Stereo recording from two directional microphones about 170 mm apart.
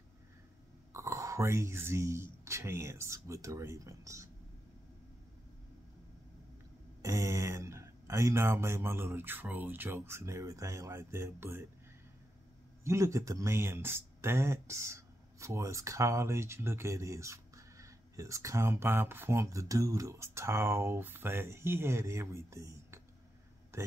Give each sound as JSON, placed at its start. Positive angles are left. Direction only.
{"t": 0.9, "sound": "speech", "side_deg": -15}
{"t": 7.0, "sound": "speech", "side_deg": -15}
{"t": 12.8, "sound": "speech", "side_deg": -15}
{"t": 23.7, "sound": "a sound", "side_deg": -15}